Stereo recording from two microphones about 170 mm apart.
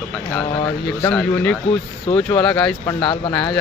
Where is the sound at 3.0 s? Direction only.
30° left (ahead or behind).